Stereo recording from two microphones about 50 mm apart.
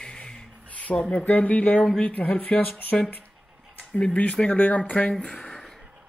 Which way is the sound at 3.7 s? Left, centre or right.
Left.